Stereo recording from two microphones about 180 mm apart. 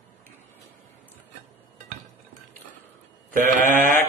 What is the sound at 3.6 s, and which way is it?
Sheep, 50° right (ahead or behind).